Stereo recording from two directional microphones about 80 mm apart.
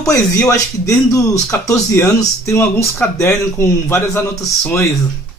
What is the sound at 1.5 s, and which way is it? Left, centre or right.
Speech, left.